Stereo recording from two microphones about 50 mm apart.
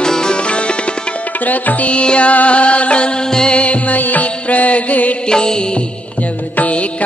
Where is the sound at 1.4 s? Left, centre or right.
Left; by 3.6 s centre.